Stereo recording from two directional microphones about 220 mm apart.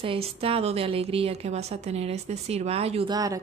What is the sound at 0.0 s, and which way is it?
A woman's voice, 25° right (ahead or behind).